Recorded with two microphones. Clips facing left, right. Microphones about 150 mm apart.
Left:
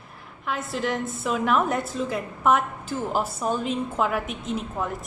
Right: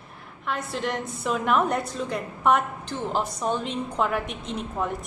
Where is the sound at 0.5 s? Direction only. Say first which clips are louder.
Left 1 dB; centre (ahead or behind).